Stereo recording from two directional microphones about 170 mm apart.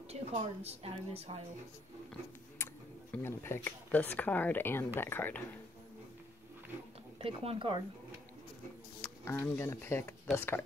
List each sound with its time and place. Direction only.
0.1 s a woman's voice: 40° right (ahead or behind)
2.6 s speech: 10° left (ahead or behind)
7.2 s a woman's voice: 35° right (ahead or behind)
9.2 s speech: 10° left (ahead or behind)